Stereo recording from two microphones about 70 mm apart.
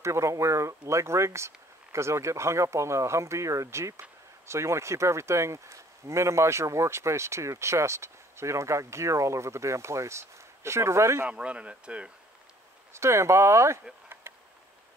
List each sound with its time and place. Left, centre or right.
0.0 s speech: right
11.2 s speech: centre
12.9 s speech: right
14.3 s a sound: right